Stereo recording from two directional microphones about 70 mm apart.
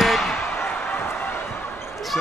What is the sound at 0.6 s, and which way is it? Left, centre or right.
Basketball bounce, left.